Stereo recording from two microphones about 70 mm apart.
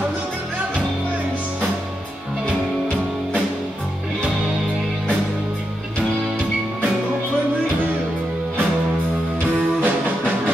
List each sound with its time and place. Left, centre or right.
9.8 s music: centre